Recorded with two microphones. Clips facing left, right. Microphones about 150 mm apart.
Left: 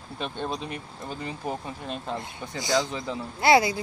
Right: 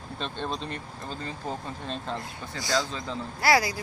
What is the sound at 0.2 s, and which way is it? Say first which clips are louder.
Speech: left 2 dB; 10° left (ahead or behind).